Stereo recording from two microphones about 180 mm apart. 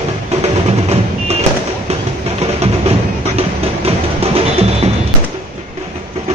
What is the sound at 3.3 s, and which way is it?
Music, 35° right (ahead or behind).